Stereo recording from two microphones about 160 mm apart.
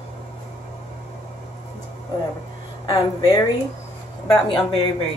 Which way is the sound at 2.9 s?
20° left (ahead or behind).